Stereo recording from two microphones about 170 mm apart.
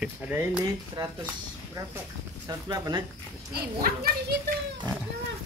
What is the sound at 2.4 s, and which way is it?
Speech, 20° right (ahead or behind).